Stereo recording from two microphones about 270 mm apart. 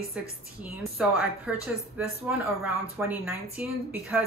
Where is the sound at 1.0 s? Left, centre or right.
Centre.